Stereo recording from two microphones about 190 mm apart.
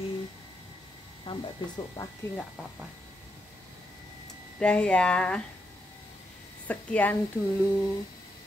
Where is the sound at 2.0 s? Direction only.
15° left (ahead or behind).